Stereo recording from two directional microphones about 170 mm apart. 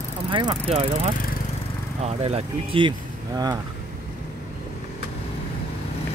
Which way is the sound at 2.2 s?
35° right (ahead or behind).